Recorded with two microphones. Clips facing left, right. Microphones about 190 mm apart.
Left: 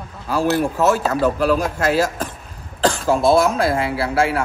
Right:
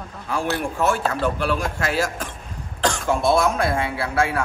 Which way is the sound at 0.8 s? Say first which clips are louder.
Left 4 dB; 40° left (ahead or behind).